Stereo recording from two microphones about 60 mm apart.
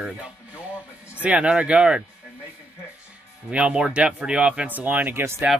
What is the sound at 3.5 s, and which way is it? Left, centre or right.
Speech, centre.